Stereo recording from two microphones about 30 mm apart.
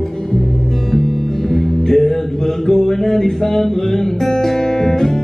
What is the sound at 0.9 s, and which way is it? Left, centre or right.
Music, centre.